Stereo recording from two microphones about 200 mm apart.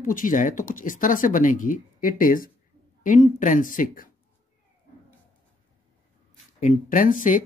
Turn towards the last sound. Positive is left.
turn(degrees=40)  # may be behind; listen again after turning